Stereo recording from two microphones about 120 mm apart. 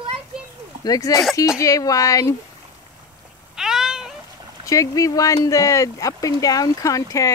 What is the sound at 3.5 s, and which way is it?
Cat, 5° right (ahead or behind).